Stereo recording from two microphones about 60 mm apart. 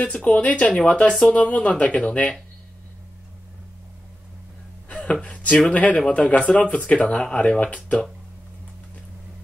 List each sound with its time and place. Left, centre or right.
0.0 s speech: left
4.8 s a sound: left
5.2 s speech: left